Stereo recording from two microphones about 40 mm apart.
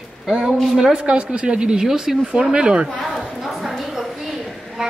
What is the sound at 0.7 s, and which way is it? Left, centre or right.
A woman's voice, right.